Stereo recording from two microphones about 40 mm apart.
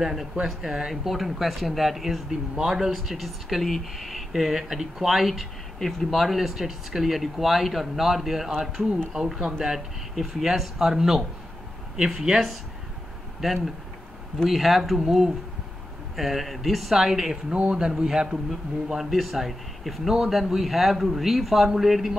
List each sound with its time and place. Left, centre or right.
0.0 s speech: centre
5.8 s speech: centre
6.0 s speech: centre
13.4 s a man's voice: centre
18.5 s speech: centre